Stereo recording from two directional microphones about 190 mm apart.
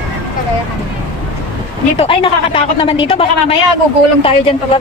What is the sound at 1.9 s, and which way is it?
Speech, 30° left (ahead or behind).